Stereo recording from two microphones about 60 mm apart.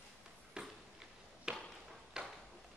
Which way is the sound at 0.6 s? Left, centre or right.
Centre.